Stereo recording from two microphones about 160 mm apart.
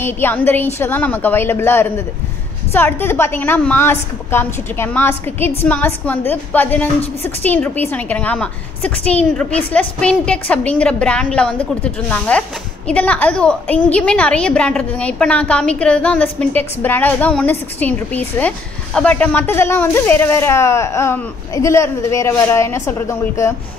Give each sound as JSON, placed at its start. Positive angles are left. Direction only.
{"t": 0.0, "sound": "a woman's voice", "side_deg": 10}